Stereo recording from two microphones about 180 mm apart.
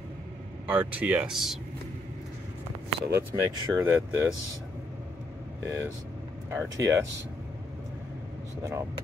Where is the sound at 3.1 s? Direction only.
15° right (ahead or behind).